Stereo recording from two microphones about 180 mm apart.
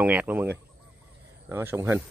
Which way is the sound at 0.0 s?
10° right (ahead or behind).